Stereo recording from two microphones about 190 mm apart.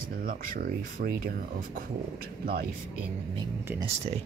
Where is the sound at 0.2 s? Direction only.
50° right (ahead or behind).